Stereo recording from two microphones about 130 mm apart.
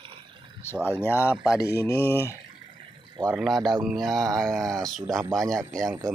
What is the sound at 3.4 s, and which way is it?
Speech, centre (ahead or behind).